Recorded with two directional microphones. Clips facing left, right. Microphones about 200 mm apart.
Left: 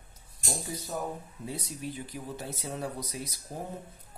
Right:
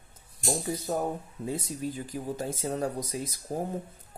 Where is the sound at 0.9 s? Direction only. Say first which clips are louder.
Right 6 dB; 65° right (ahead or behind).